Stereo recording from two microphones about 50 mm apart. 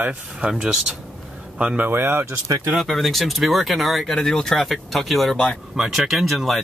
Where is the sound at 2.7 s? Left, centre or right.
Centre.